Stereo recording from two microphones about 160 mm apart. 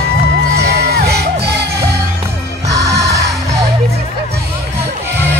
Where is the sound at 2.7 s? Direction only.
20° right (ahead or behind).